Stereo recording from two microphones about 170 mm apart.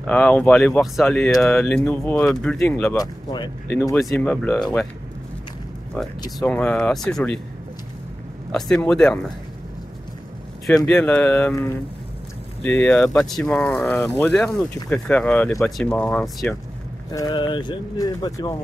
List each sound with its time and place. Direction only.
0.0 s speech: 10° left (ahead or behind)
3.0 s speech: 25° left (ahead or behind)
3.9 s speech: 5° left (ahead or behind)
6.4 s speech: 10° left (ahead or behind)
8.5 s speech: 5° left (ahead or behind)
10.9 s speech: 10° left (ahead or behind)
12.8 s speech: 5° left (ahead or behind)
17.1 s speech: 25° left (ahead or behind)